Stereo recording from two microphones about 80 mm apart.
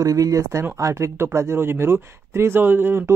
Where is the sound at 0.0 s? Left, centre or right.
Right.